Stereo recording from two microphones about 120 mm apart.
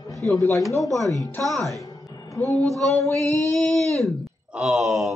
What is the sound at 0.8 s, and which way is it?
Speech, centre (ahead or behind).